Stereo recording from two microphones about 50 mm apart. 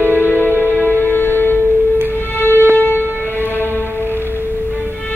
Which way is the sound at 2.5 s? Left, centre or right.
Right.